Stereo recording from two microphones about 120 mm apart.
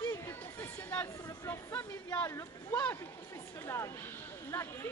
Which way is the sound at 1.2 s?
20° left (ahead or behind).